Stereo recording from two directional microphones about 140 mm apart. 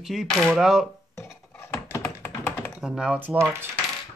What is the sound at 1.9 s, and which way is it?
Tap, 15° left (ahead or behind).